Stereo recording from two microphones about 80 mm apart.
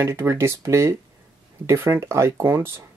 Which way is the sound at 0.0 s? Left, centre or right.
Right.